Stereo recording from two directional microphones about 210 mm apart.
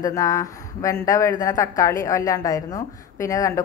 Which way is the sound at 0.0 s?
15° left (ahead or behind).